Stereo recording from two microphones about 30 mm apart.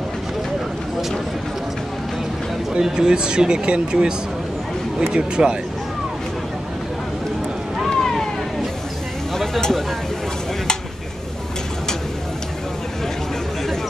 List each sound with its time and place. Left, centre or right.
2.8 s speech: right
5.1 s speech: right
7.9 s vehicle: centre
9.3 s a sound: centre